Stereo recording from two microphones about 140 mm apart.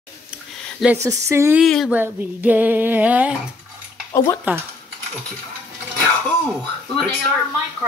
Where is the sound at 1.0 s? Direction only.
20° right (ahead or behind).